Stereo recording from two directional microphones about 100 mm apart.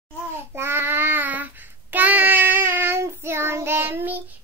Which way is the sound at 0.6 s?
25° right (ahead or behind).